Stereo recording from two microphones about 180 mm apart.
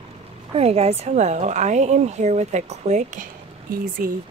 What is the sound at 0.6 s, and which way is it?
Speech, 35° right (ahead or behind).